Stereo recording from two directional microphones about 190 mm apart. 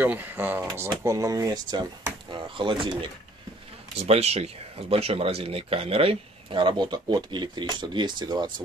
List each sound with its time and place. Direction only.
0.0 s speech: 10° right (ahead or behind); by 3.0 s 25° right (ahead or behind)
4.0 s speech: 35° right (ahead or behind)